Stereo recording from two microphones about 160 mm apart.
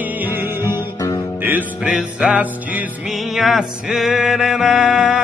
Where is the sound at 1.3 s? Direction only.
10° right (ahead or behind).